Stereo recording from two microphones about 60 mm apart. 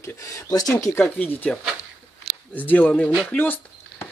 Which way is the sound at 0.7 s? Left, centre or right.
Left.